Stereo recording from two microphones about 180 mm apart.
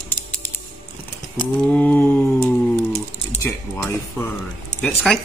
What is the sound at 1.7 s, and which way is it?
Speech, 10° left (ahead or behind).